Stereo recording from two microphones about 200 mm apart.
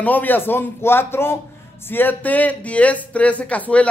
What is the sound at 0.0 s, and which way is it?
A man's voice, 10° left (ahead or behind).